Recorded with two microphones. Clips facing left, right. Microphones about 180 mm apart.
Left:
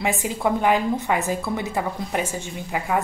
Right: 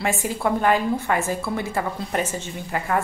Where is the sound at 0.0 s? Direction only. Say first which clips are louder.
Even; 15° left (ahead or behind).